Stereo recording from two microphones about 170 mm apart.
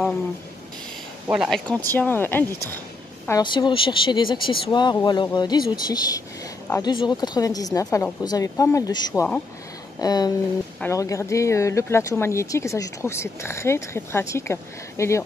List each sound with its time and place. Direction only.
1.2 s speech: 5° right (ahead or behind)
1.9 s speech: 10° left (ahead or behind)
3.3 s speech: 25° left (ahead or behind)